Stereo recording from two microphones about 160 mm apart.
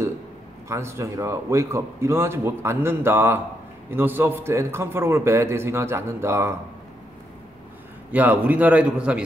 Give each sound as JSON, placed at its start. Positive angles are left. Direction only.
{"t": 0.7, "sound": "a man's voice", "side_deg": -15}
{"t": 8.1, "sound": "a man's voice", "side_deg": -10}